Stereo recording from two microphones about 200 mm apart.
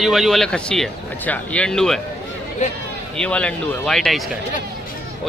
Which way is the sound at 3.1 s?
5° left (ahead or behind).